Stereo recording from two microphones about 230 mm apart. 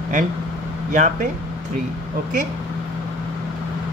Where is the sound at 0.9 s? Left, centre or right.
Right.